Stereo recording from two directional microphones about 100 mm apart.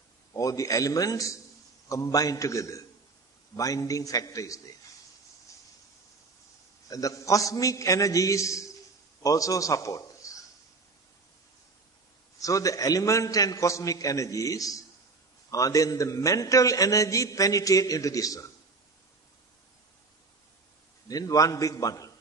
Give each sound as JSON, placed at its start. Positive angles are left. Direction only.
{"t": 0.3, "sound": "a man's voice", "side_deg": 35}
{"t": 6.9, "sound": "a man's voice", "side_deg": 35}
{"t": 12.4, "sound": "a man's voice", "side_deg": 35}
{"t": 21.1, "sound": "a man's voice", "side_deg": 35}